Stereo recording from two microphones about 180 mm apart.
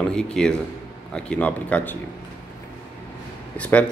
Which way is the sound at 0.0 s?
5° left (ahead or behind).